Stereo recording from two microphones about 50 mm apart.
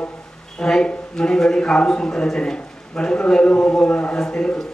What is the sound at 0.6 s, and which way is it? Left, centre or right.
A man's voice, centre.